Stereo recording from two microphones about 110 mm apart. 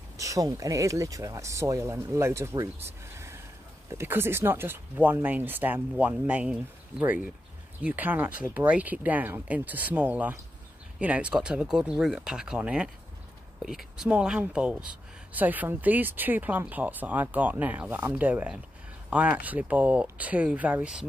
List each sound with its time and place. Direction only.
0.2 s speech: 30° right (ahead or behind); by 21.0 s 10° right (ahead or behind)